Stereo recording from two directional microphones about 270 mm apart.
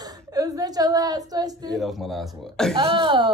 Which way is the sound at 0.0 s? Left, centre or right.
Centre.